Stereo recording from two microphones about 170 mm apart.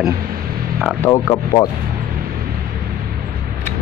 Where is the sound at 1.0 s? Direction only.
20° left (ahead or behind).